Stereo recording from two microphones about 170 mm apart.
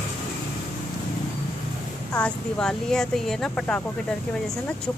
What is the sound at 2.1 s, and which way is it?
Speech, 5° left (ahead or behind).